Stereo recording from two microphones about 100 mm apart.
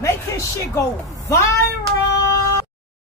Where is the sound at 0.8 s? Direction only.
30° left (ahead or behind).